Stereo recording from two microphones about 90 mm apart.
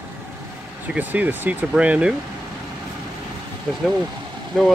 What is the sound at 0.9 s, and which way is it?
Speech, 20° right (ahead or behind).